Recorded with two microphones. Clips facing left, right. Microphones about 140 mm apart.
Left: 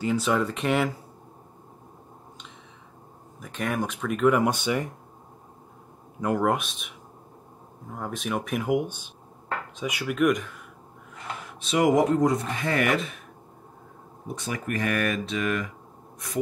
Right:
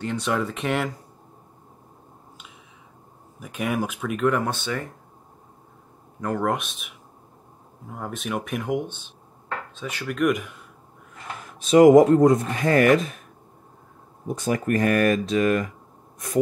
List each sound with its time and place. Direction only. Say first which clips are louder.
0.0 s speech: left 1 dB; 5° left (ahead or behind)
3.3 s speech: right 2 dB; 10° right (ahead or behind)
4.3 s speech: left 5 dB; 15° left (ahead or behind)
6.2 s speech: left 1 dB; 5° left (ahead or behind)
11.6 s speech: right 9 dB; 45° right (ahead or behind)
14.2 s speech: right 7 dB; 45° right (ahead or behind)